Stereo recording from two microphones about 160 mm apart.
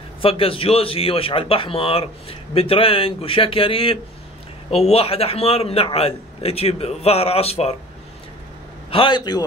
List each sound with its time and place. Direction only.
0.2 s a man's voice: 35° left (ahead or behind)
8.9 s a man's voice: 30° left (ahead or behind)